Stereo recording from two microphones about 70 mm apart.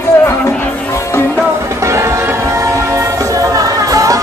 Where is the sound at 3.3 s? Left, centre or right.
Right.